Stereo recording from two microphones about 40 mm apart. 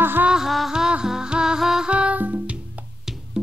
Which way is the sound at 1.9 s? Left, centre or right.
Right.